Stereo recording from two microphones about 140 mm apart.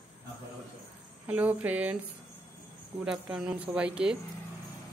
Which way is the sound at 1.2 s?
10° right (ahead or behind).